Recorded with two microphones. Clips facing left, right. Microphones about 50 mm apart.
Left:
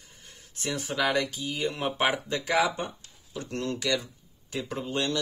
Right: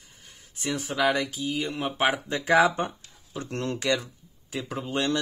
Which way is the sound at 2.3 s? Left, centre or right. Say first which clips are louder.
Right 5 dB; right.